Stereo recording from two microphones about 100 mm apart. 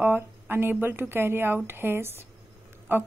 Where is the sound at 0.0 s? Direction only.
20° right (ahead or behind).